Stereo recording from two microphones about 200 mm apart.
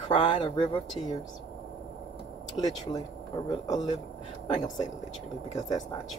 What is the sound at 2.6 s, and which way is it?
Speech, 20° left (ahead or behind).